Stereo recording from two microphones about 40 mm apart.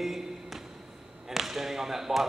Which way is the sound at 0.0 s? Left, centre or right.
Centre.